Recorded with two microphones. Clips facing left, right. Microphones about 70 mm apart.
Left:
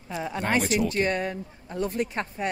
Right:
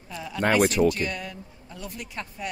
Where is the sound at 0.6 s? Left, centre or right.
Right.